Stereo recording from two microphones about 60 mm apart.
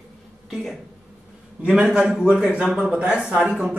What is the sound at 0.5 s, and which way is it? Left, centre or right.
Speech, centre.